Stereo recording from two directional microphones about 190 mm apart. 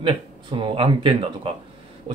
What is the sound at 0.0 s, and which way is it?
Speech, 25° right (ahead or behind).